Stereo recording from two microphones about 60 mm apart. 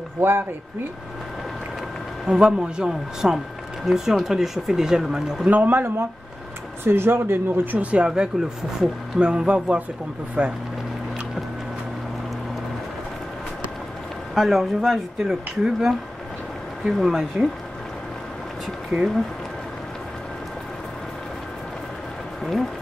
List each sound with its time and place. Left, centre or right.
0.2 s speech: right
2.2 s speech: centre
5.5 s speech: right
6.8 s speech: right
7.7 s speech: right
8.1 s speech: centre
14.3 s speech: centre
22.4 s a sound: centre